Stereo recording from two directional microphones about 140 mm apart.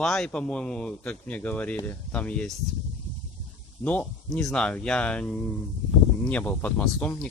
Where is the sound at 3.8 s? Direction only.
10° left (ahead or behind).